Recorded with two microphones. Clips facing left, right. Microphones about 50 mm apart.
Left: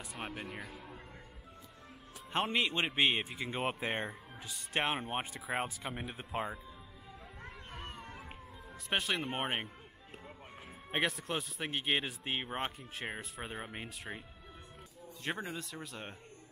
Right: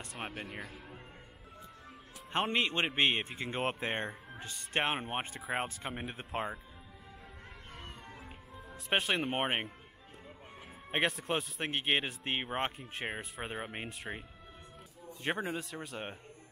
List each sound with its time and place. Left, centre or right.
0.2 s speech: centre
2.3 s speech: centre
7.7 s run: centre
8.8 s speech: centre
9.3 s speech: centre
10.9 s speech: centre
15.2 s speech: centre